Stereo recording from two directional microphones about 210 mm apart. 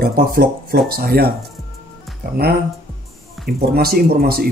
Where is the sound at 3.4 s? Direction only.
50° right (ahead or behind).